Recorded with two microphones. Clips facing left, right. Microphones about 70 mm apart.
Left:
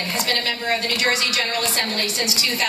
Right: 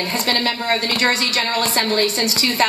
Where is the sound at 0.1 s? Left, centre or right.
Right.